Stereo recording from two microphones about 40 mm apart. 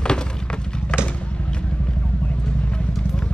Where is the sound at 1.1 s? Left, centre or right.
Left.